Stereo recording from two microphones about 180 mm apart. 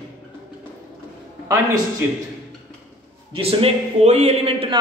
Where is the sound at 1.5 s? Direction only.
15° right (ahead or behind).